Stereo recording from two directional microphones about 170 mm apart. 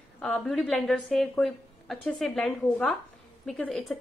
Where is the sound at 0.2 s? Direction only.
5° left (ahead or behind).